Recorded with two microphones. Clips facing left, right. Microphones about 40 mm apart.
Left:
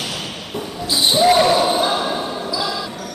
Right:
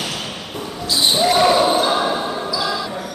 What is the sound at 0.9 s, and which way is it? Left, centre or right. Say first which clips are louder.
Basketball bounce: left 2 dB; centre.